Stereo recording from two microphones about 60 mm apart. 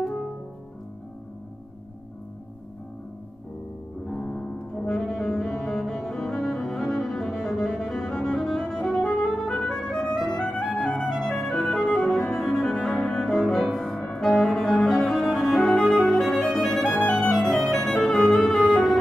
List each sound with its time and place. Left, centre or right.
0.0 s music: centre
4.2 s music: left
4.7 s music: centre